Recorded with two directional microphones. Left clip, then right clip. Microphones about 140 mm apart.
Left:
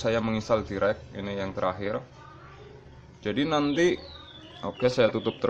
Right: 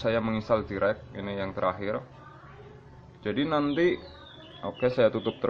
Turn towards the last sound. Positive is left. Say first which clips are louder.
# even
turn(degrees=20)  # may be behind; listen again after turning